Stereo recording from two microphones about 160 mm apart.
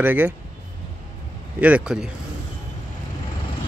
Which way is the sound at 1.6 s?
5° right (ahead or behind).